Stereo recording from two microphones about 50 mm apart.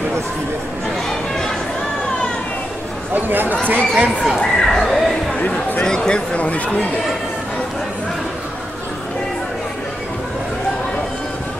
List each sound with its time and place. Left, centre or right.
3.2 s speech: right
4.4 s speech: centre; by 6.9 s left